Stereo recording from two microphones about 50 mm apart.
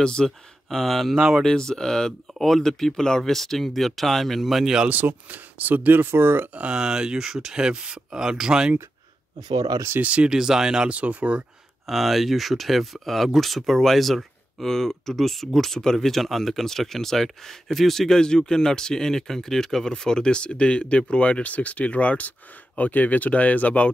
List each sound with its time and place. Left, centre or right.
0.0 s speech: centre
1.1 s speech: centre
1.7 s speech: centre
4.8 s speech: right
6.7 s speech: centre
9.9 s speech: right
10.3 s speech: centre
10.9 s speech: right
11.8 s speech: centre; by 23.9 s left